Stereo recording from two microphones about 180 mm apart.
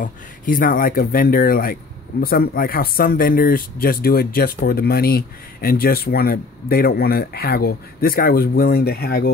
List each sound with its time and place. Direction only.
0.0 s speech: 50° left (ahead or behind)